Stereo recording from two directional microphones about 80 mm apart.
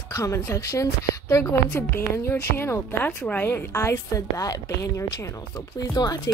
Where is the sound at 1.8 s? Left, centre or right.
Left.